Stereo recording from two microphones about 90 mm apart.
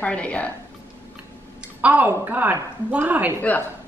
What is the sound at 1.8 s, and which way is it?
A woman's voice, 15° right (ahead or behind).